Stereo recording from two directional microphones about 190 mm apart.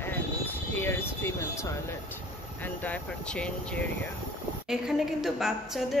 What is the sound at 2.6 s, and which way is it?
A woman's voice, 10° left (ahead or behind).